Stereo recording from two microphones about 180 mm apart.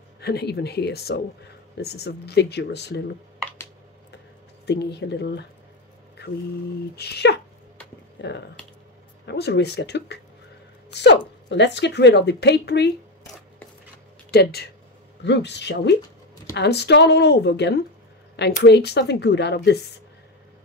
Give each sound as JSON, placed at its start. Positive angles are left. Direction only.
{"t": 0.2, "sound": "speech", "side_deg": 65}
{"t": 4.6, "sound": "speech", "side_deg": 70}
{"t": 6.2, "sound": "a sound", "side_deg": 70}
{"t": 7.0, "sound": "speech", "side_deg": 65}
{"t": 14.3, "sound": "speech", "side_deg": 60}
{"t": 15.2, "sound": "speech", "side_deg": 75}